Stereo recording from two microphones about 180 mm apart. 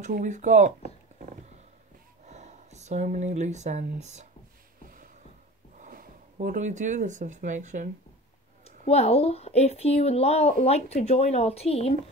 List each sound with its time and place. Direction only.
0.0 s speech: 45° right (ahead or behind)
4.8 s a sound: 50° right (ahead or behind)
5.8 s speech: 50° right (ahead or behind)
8.6 s a woman's voice: 35° left (ahead or behind)